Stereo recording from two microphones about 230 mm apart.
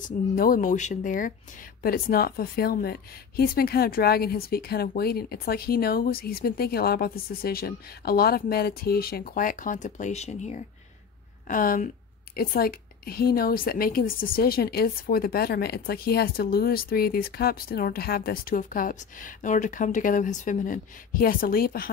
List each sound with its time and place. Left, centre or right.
0.0 s a woman's voice: left